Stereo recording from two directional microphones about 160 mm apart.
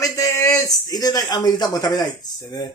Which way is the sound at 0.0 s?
20° left (ahead or behind).